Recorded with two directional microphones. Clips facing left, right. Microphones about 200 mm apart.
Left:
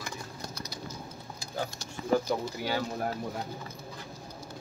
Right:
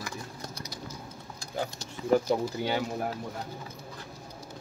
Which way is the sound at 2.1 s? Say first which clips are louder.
Right 3 dB; 25° right (ahead or behind).